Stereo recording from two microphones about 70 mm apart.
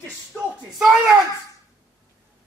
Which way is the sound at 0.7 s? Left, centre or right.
Centre.